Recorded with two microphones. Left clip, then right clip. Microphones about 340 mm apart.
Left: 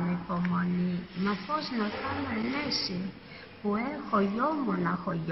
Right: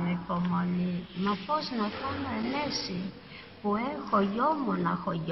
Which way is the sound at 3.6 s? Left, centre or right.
Centre.